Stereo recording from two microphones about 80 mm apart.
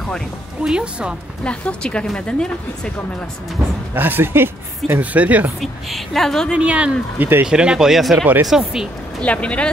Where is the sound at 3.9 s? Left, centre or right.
Right.